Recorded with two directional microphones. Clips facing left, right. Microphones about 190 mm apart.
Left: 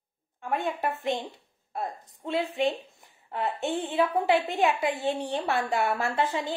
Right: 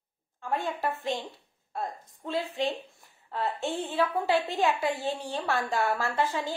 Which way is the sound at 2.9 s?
15° left (ahead or behind).